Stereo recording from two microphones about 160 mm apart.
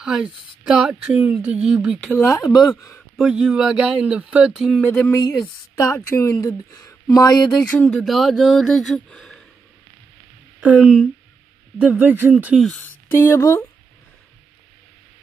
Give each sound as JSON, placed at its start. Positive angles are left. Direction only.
{"t": 0.0, "sound": "speech", "side_deg": -5}
{"t": 2.0, "sound": "speech", "side_deg": 10}
{"t": 3.2, "sound": "speech", "side_deg": -5}
{"t": 4.9, "sound": "speech", "side_deg": 15}
{"t": 7.7, "sound": "speech", "side_deg": 5}
{"t": 10.6, "sound": "speech", "side_deg": -10}
{"t": 12.6, "sound": "speech", "side_deg": 5}
{"t": 13.1, "sound": "speech", "side_deg": 15}